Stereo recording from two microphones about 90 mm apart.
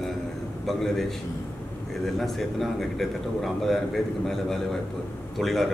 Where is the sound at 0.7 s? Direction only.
5° left (ahead or behind).